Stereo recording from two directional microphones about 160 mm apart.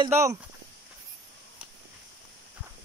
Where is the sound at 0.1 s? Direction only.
20° right (ahead or behind).